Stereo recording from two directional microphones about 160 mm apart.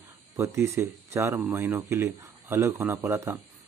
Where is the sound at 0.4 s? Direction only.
15° right (ahead or behind).